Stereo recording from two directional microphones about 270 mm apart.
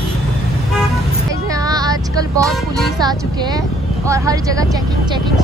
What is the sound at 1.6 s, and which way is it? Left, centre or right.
Vehicle, centre.